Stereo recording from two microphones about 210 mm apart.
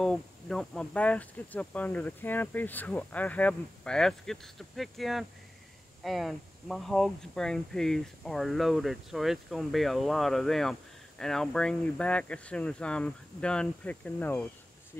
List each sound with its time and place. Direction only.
0.0 s speech: 5° left (ahead or behind)